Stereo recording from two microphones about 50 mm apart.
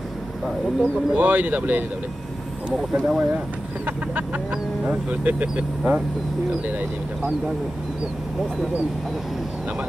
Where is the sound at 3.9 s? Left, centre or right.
Right.